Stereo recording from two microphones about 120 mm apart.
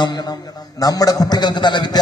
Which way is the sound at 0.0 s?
35° left (ahead or behind).